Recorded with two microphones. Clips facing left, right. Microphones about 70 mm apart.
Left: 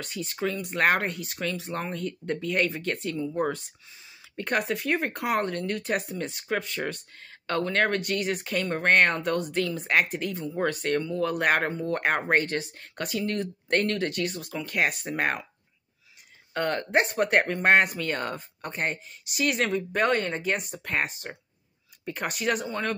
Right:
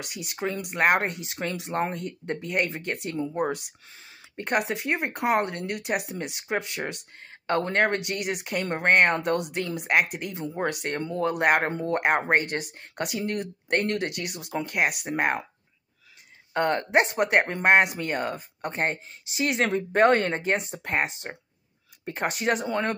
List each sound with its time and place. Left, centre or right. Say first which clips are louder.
0.0 s speech: left 1 dB; centre
16.5 s speech: right 3 dB; right